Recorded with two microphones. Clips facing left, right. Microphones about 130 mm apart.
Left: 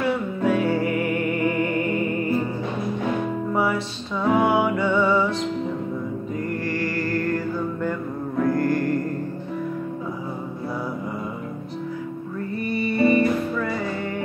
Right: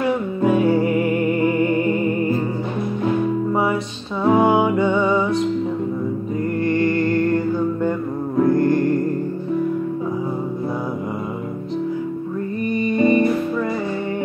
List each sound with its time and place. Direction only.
0.4 s music: 25° right (ahead or behind)
4.2 s music: 15° right (ahead or behind)
6.6 s music: 25° right (ahead or behind)
12.7 s music: 20° right (ahead or behind)